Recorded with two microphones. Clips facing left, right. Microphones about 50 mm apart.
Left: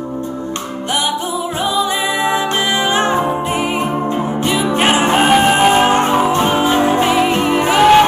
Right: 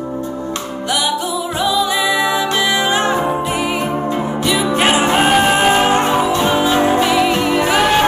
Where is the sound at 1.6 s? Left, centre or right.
Left.